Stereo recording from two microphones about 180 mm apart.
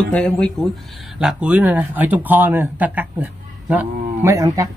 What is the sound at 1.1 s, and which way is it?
Speech, 5° right (ahead or behind).